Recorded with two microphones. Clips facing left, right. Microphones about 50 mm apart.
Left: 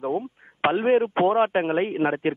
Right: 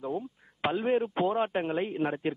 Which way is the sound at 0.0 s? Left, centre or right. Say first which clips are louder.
Left 7 dB; left.